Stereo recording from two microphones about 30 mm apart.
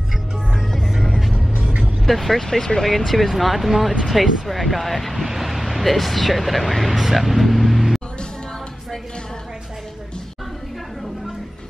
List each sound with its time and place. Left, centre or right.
2.0 s speech: centre
2.4 s speech: centre
3.3 s speech: centre
5.2 s speech: centre